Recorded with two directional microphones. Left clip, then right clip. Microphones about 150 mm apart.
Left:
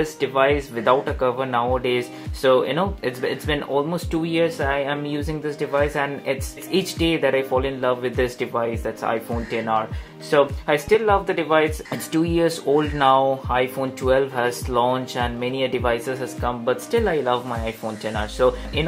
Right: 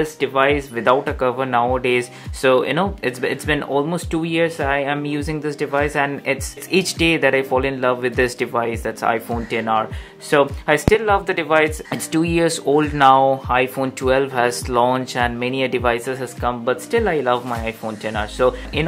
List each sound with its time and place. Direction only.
0.0 s speech: 25° right (ahead or behind)